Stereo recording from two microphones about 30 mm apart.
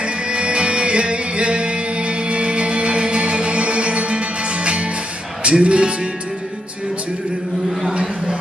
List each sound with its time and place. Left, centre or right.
0.0 s music: right